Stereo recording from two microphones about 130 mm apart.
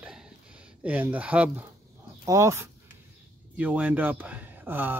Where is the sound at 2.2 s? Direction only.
25° right (ahead or behind).